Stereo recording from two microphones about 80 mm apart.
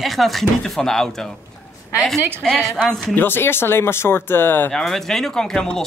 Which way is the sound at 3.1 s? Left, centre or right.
Left.